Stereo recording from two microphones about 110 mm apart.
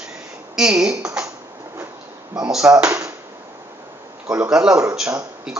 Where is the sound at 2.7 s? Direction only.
20° right (ahead or behind).